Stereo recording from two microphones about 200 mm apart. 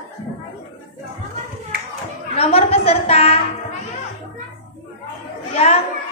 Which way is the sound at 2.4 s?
30° left (ahead or behind).